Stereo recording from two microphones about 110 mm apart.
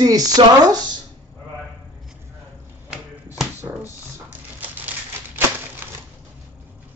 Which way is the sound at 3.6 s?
25° right (ahead or behind).